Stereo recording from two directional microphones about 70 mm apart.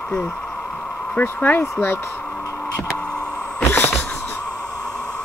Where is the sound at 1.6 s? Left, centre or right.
Left.